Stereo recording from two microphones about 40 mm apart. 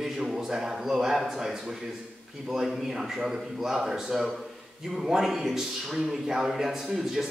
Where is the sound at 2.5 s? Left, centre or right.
Centre.